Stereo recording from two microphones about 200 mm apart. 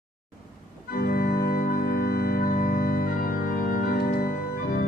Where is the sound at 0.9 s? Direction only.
50° left (ahead or behind).